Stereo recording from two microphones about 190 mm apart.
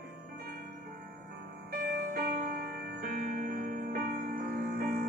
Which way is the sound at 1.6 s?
50° right (ahead or behind).